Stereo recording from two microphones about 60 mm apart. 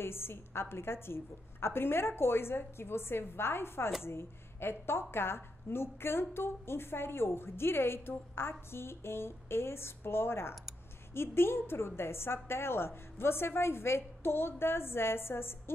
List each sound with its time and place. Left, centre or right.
0.0 s a woman's voice: left